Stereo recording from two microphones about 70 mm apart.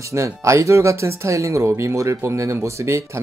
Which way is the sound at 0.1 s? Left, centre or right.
Right.